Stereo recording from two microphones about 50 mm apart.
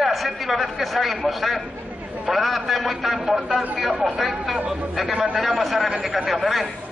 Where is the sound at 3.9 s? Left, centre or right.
Centre.